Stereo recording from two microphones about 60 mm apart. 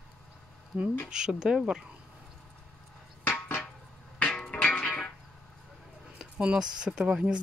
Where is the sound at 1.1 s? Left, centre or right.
Centre.